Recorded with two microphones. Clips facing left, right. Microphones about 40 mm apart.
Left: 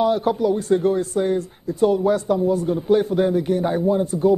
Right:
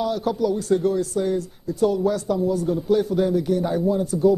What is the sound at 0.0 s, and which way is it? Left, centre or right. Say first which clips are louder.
A man's voice: left 4 dB; left.